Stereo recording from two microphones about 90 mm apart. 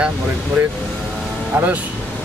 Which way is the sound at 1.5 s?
25° right (ahead or behind).